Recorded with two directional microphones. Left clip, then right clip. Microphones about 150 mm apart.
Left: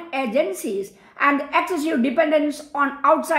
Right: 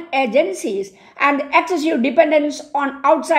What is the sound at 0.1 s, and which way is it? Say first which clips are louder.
A woman's voice: right 5 dB; 20° right (ahead or behind).